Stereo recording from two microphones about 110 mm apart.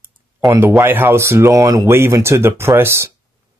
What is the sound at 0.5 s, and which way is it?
Speech, 25° right (ahead or behind).